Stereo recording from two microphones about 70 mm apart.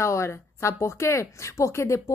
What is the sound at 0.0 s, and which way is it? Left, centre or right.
A woman's voice, left.